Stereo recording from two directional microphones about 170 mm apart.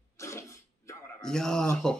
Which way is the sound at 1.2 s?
5° left (ahead or behind).